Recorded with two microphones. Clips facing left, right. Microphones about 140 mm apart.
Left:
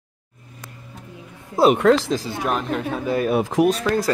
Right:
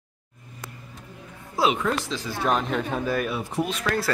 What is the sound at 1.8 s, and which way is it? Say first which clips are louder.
Speech: left 10 dB; 90° left.